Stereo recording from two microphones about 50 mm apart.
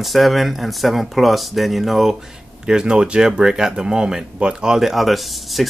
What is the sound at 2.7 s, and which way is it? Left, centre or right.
Speech, centre.